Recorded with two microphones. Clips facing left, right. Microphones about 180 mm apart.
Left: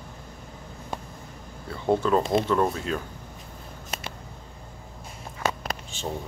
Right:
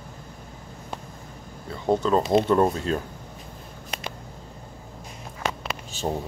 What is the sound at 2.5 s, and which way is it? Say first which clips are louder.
Speech: right 3 dB; 35° right (ahead or behind).